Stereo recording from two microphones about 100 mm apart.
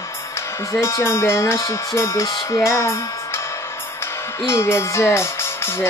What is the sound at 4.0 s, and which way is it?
Music, 25° left (ahead or behind).